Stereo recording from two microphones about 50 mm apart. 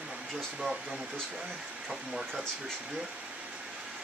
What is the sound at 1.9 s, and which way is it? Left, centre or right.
Speech, centre.